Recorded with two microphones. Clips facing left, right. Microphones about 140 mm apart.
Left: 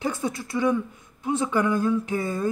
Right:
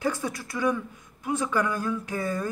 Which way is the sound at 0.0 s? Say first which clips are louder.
Left 1 dB; 20° left (ahead or behind).